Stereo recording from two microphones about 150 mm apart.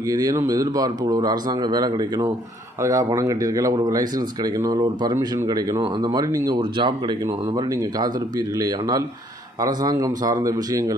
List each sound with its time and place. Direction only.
0.1 s speech: 25° right (ahead or behind)